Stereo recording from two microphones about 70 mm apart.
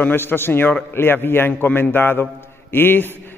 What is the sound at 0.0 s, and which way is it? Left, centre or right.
A man's voice, left.